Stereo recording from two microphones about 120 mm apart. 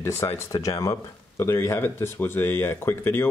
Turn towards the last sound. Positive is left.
turn(degrees=20)  # may be behind; listen again after turning